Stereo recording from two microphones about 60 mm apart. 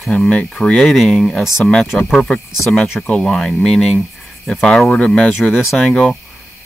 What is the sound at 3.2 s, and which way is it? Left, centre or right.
Speech, centre.